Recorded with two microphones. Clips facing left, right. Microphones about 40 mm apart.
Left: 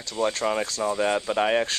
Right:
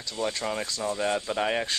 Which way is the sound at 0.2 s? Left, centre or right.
Centre.